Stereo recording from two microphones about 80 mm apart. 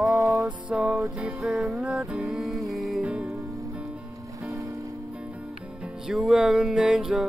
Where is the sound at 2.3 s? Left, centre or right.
Centre.